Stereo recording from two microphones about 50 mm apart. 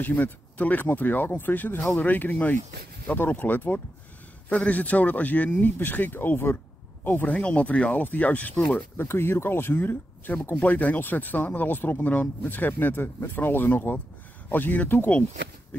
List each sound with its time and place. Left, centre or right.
0.0 s speech: left
7.3 s speech: left
8.9 s speech: left